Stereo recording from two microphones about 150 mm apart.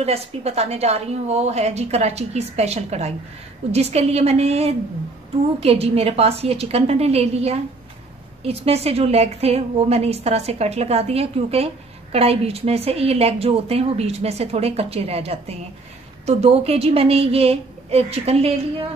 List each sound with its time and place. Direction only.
0.0 s a woman's voice: 45° right (ahead or behind)